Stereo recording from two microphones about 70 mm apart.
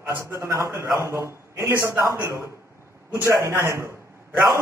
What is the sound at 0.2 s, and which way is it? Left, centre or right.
A man's voice, right.